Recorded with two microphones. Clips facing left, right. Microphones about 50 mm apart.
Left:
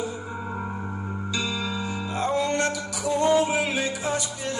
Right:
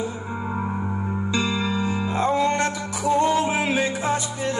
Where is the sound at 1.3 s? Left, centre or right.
Right.